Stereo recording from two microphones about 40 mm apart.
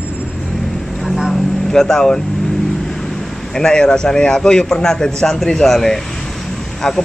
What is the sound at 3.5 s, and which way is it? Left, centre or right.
A man's voice, centre.